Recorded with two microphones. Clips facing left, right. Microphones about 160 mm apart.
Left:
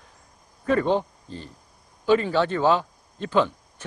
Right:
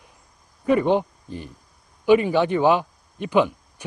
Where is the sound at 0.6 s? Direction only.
15° right (ahead or behind).